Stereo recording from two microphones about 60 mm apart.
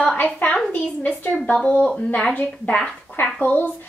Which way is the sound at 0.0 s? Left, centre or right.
Left.